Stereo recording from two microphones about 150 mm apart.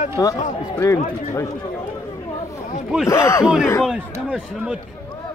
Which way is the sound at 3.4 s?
5° right (ahead or behind).